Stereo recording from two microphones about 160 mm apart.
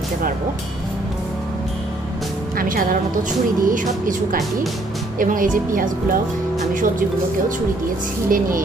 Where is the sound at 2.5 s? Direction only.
60° right (ahead or behind).